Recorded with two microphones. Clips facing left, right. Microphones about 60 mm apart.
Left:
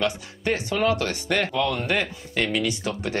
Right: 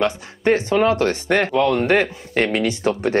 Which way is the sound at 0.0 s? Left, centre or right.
Right.